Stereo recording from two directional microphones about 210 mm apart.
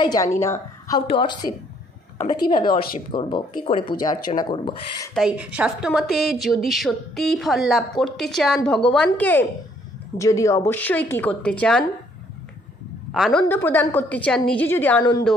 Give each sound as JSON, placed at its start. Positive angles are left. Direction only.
{"t": 0.0, "sound": "speech", "side_deg": 20}
{"t": 5.1, "sound": "a woman's voice", "side_deg": -5}
{"t": 13.1, "sound": "a woman's voice", "side_deg": 0}